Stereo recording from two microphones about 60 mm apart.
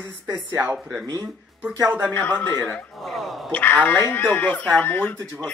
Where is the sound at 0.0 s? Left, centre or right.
Right.